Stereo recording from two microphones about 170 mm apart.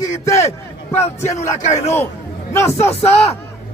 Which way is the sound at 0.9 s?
40° left (ahead or behind).